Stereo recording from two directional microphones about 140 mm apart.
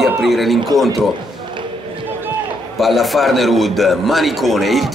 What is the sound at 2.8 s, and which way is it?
A man's voice, centre (ahead or behind).